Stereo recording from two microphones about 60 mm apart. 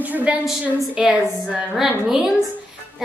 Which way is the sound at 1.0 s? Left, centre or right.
Centre.